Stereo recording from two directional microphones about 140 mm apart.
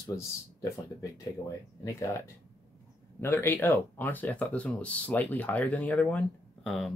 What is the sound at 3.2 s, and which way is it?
Speech, 15° left (ahead or behind).